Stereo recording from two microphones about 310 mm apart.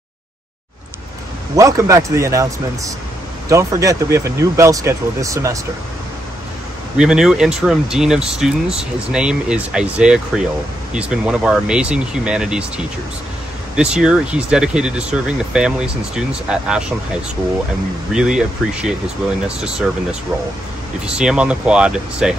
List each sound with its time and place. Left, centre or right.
1.6 s speech: centre
7.0 s speech: centre
18.1 s speech: centre